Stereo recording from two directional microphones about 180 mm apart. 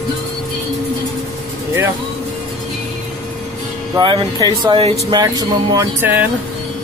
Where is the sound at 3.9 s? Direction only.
25° right (ahead or behind); by 6.2 s 10° right (ahead or behind).